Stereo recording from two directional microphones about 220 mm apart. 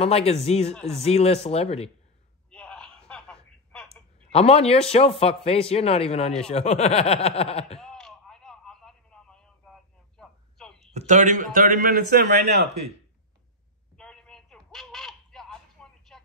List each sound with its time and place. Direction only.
0.0 s speech: 25° left (ahead or behind)
0.7 s speech: 5° left (ahead or behind)
1.0 s speech: 30° left (ahead or behind)
2.5 s telephone: 5° left (ahead or behind)
4.3 s speech: 25° left (ahead or behind)
7.8 s a sound: 5° left (ahead or behind)
10.9 s a man's voice: 30° right (ahead or behind); by 12.9 s 50° right (ahead or behind)
13.9 s a sound: 5° left (ahead or behind)